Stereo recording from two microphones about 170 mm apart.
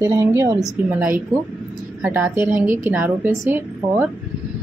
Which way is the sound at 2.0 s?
10° right (ahead or behind).